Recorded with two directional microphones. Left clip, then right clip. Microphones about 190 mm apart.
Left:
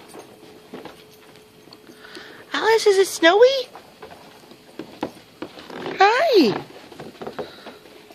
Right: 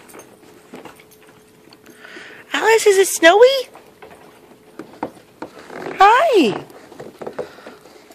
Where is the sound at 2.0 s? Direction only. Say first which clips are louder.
Right 4 dB; 10° right (ahead or behind).